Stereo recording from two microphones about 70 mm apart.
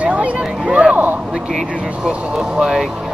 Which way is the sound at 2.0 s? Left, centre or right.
Centre.